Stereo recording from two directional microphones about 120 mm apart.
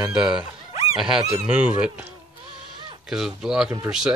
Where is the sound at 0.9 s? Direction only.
5° right (ahead or behind).